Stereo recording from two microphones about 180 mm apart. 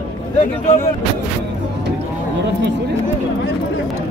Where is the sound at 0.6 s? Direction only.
50° left (ahead or behind).